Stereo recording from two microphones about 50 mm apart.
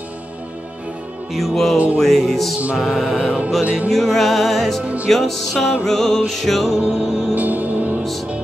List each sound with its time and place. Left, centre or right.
1.3 s music: centre
3.3 s music: right
3.9 s music: centre
4.8 s music: right
5.1 s music: centre
7.3 s music: right